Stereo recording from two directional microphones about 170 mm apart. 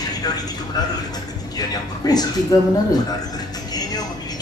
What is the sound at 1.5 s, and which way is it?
Speech, 25° left (ahead or behind).